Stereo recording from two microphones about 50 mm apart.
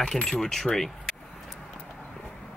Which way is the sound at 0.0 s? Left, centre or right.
Centre.